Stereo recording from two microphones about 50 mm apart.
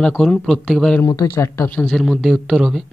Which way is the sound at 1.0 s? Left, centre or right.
Left.